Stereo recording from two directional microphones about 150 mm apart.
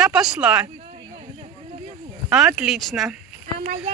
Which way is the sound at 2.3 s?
5° right (ahead or behind).